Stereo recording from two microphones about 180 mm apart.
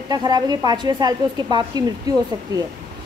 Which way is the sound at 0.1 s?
20° right (ahead or behind).